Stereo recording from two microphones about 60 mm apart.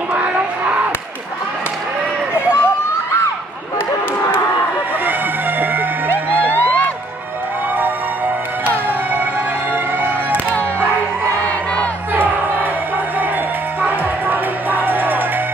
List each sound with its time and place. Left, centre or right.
0.1 s a sound: right
2.3 s crowd: left
5.6 s music: right
8.6 s music: right
13.7 s music: right